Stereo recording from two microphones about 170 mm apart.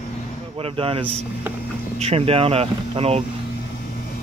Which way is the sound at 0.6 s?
35° right (ahead or behind).